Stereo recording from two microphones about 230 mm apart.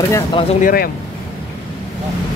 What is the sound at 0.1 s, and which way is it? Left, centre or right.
Speech, centre.